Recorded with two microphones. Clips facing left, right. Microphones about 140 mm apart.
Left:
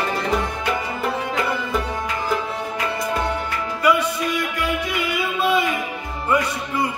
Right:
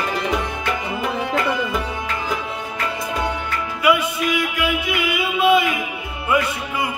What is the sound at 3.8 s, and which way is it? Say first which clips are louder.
Music: right 1 dB; 10° right (ahead or behind).